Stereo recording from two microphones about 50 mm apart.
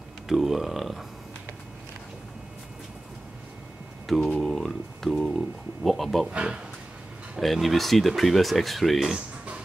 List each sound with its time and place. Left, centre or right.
0.3 s speech: centre
4.4 s a sound: centre
5.9 s speech: centre
6.3 s speech: centre
7.3 s speech: centre